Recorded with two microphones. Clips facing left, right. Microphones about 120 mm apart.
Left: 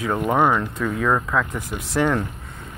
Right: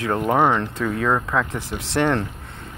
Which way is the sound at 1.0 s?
30° right (ahead or behind).